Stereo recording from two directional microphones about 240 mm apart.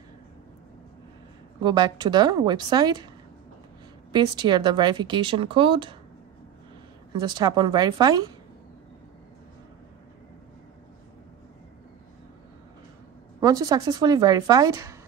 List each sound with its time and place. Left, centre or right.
1.6 s a woman's voice: centre
4.1 s speech: centre
7.1 s a woman's voice: centre
13.4 s a woman's voice: centre